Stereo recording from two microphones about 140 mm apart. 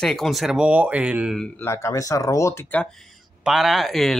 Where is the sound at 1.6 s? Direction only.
20° left (ahead or behind).